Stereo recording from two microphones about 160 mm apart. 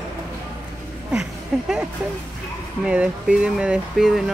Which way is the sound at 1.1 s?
5° right (ahead or behind).